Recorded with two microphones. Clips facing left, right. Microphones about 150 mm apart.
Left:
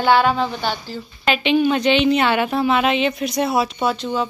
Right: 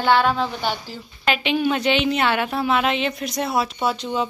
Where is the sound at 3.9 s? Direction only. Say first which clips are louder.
Left 2 dB; 15° right (ahead or behind).